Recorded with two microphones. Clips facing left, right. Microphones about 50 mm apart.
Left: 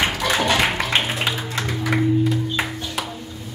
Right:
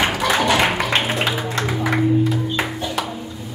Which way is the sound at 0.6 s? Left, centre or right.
Centre.